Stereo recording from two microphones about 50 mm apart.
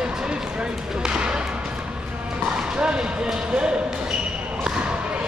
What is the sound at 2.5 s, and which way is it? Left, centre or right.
Basketball bounce, centre.